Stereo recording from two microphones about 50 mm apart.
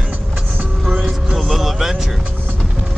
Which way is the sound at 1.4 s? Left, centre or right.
Centre.